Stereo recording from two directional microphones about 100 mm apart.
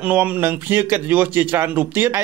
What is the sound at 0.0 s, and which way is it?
A man's voice, 15° right (ahead or behind).